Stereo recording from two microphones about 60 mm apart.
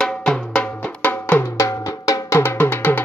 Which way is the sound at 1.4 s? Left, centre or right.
Left.